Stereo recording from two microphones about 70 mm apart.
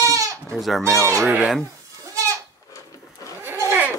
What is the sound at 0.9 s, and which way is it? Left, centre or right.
Speech, right.